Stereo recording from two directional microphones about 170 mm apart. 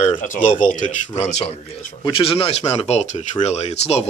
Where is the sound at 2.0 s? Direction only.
30° left (ahead or behind).